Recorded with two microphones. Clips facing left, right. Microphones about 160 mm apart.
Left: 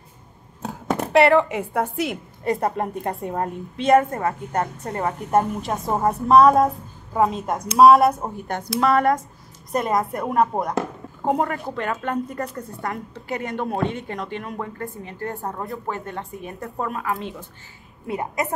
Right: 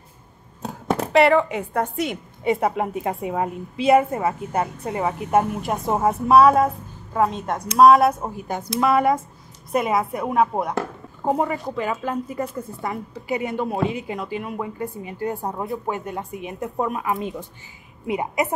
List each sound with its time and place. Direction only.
0.8 s a woman's voice: 5° right (ahead or behind)